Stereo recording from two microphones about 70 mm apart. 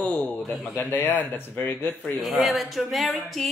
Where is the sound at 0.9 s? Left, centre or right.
Left.